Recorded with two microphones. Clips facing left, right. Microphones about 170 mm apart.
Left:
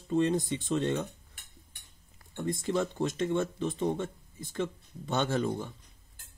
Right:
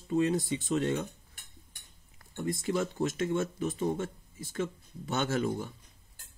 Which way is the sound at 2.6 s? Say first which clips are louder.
Left 1 dB; 5° right (ahead or behind).